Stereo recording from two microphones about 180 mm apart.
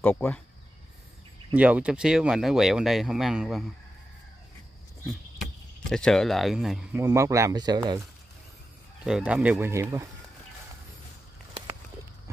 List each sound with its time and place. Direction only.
0.0 s speech: 10° left (ahead or behind)
1.5 s speech: 10° right (ahead or behind)
5.4 s speech: 5° left (ahead or behind)
7.0 s speech: 15° right (ahead or behind)
9.0 s speech: 5° right (ahead or behind)